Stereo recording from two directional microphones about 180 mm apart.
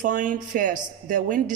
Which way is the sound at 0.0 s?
45° right (ahead or behind).